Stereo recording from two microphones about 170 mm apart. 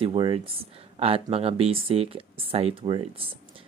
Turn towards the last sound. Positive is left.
turn(degrees=-35)  # may be behind; listen again after turning